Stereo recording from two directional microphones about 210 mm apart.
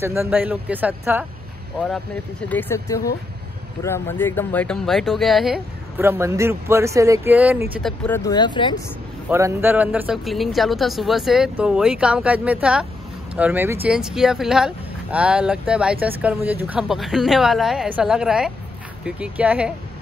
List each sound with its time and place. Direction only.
0.0 s speech: 10° right (ahead or behind)
2.4 s speech: 10° left (ahead or behind); by 7.6 s 10° right (ahead or behind)
7.8 s speech: 5° left (ahead or behind)
8.2 s speech: 20° left (ahead or behind)
9.3 s speech: 10° right (ahead or behind)